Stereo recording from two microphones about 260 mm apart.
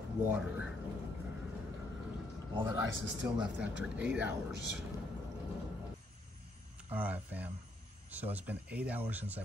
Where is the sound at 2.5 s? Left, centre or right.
Centre.